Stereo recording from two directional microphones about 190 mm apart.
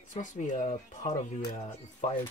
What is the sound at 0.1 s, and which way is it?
Speech, 40° left (ahead or behind).